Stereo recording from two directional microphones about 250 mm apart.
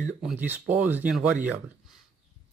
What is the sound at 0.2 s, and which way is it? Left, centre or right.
Speech, centre.